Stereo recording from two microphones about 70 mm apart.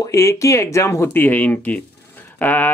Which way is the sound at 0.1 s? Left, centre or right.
Left.